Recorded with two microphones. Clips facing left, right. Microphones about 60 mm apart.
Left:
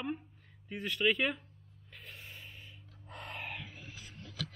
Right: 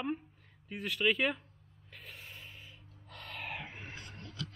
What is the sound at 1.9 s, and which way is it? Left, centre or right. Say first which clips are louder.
Gasp: even; centre.